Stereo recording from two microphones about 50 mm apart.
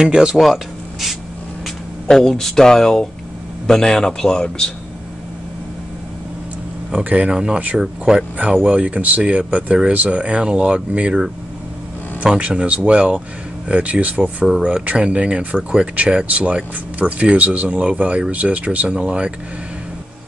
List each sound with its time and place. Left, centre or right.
0.0 s speech: centre
2.0 s speech: centre
7.0 s speech: right
8.6 s speech: right
12.4 s speech: right